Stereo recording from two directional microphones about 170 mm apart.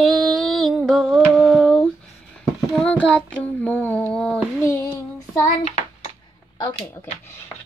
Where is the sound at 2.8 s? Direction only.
5° left (ahead or behind).